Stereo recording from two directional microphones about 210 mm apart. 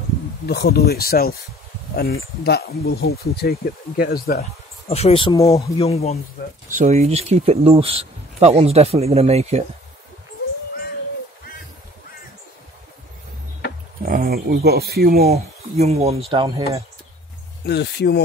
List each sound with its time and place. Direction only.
0.5 s speech: 50° left (ahead or behind)
2.4 s speech: 50° left (ahead or behind)
4.4 s speech: 30° left (ahead or behind)
5.8 s speech: 30° left (ahead or behind)
6.7 s speech: 35° right (ahead or behind)
14.0 s speech: 45° right (ahead or behind)
15.2 s speech: 30° right (ahead or behind)
17.6 s speech: 50° left (ahead or behind)